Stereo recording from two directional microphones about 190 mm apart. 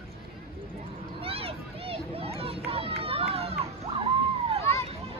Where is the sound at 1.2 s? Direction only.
30° right (ahead or behind).